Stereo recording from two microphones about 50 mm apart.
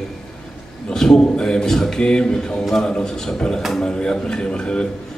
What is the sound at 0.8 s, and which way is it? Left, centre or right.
A man's voice, centre.